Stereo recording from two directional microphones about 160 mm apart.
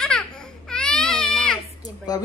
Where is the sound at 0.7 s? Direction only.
5° left (ahead or behind).